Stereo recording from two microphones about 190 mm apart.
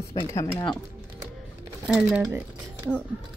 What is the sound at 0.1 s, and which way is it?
Speech, 20° left (ahead or behind).